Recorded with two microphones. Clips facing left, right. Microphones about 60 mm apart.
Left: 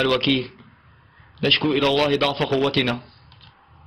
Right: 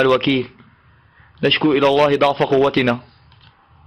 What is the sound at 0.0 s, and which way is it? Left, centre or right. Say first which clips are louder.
A man's voice: right 5 dB; centre.